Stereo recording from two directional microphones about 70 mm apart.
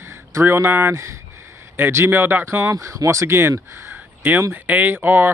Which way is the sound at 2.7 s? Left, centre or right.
Right.